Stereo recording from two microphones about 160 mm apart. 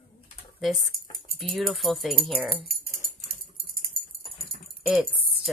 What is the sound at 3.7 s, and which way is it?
Typing, 70° right (ahead or behind).